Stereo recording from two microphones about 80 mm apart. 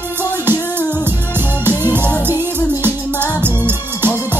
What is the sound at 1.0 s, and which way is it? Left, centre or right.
Music, right.